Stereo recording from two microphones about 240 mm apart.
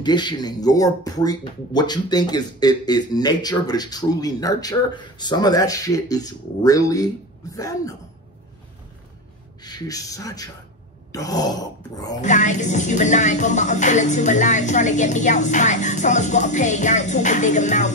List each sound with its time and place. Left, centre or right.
0.0 s speech: centre
9.6 s speech: centre
12.2 s speech: left